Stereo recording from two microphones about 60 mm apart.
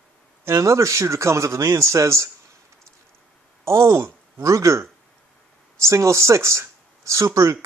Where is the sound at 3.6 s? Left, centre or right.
Right.